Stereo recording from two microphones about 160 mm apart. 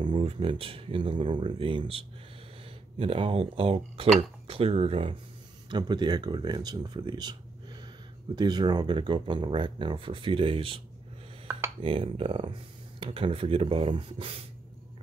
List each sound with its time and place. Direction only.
0.0 s speech: 30° right (ahead or behind)
11.8 s speech: 35° right (ahead or behind)